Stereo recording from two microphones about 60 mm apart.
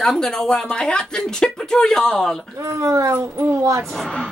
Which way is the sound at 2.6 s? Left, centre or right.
Right.